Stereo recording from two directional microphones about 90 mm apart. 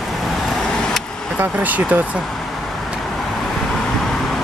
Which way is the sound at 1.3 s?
20° right (ahead or behind).